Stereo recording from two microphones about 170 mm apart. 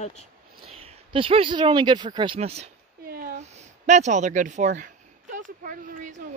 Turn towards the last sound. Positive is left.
turn(degrees=-50)  # may be behind; listen again after turning